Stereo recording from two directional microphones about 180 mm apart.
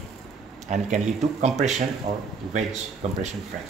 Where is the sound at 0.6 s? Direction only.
40° right (ahead or behind).